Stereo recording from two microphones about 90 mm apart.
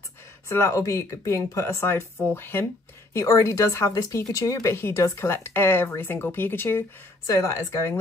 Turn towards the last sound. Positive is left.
turn(degrees=35)  # may be behind; listen again after turning